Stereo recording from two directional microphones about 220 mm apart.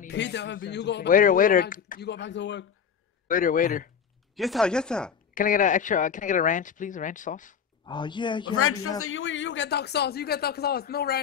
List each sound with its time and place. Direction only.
0.1 s speech: 50° left (ahead or behind)
3.3 s speech: 40° left (ahead or behind)
4.4 s speech: centre (ahead or behind)
5.3 s speech: 40° left (ahead or behind)
7.8 s speech: 20° left (ahead or behind)
8.5 s speech: 75° left (ahead or behind)
9.0 s speech: 60° left (ahead or behind)